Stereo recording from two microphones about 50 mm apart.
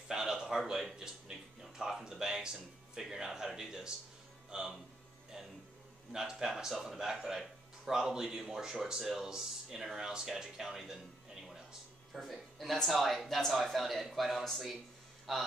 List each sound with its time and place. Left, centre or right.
0.1 s speech: centre
6.1 s a man's voice: centre
12.1 s speech: centre